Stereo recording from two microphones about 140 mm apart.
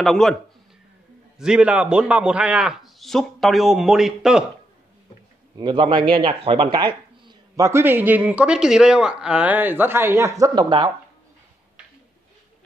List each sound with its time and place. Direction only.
0.0 s a man's voice: centre (ahead or behind)
1.4 s a man's voice: 5° right (ahead or behind)
5.6 s a man's voice: 35° right (ahead or behind)
7.6 s a man's voice: 15° right (ahead or behind); by 10.9 s 35° right (ahead or behind)